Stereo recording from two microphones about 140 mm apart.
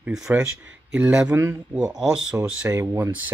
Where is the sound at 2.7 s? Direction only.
20° right (ahead or behind).